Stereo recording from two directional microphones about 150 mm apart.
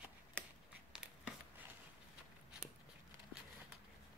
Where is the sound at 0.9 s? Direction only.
5° right (ahead or behind).